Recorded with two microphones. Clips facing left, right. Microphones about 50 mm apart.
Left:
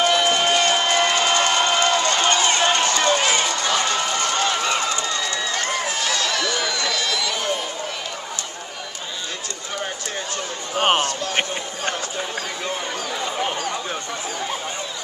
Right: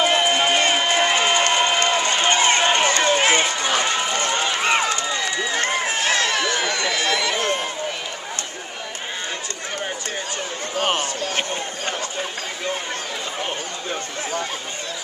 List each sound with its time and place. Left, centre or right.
0.0 s crowd: centre
1.9 s run: centre
4.6 s run: right
5.0 s run: centre
5.6 s run: right
10.8 s a sound: left